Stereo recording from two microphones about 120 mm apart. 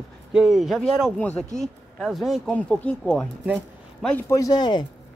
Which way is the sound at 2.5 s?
10° left (ahead or behind).